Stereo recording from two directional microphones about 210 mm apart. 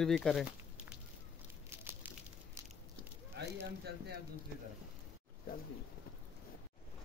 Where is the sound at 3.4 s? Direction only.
55° right (ahead or behind).